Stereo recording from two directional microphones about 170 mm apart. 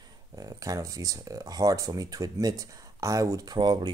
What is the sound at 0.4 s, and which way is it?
Speech, 20° right (ahead or behind).